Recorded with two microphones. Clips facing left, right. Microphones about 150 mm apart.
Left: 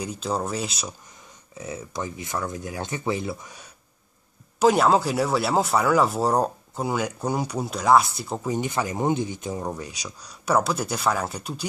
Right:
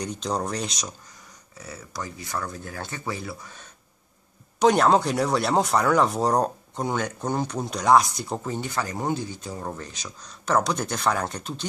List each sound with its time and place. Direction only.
0.0 s speech: 5° left (ahead or behind)
1.6 s speech: 20° left (ahead or behind)
4.6 s speech: 5° left (ahead or behind)
8.5 s speech: 20° left (ahead or behind)